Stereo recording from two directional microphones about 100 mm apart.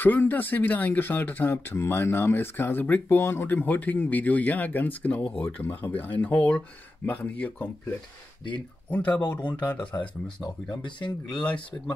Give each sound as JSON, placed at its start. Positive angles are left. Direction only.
{"t": 0.0, "sound": "speech", "side_deg": 20}
{"t": 8.9, "sound": "speech", "side_deg": 15}
{"t": 9.4, "sound": "speech", "side_deg": 45}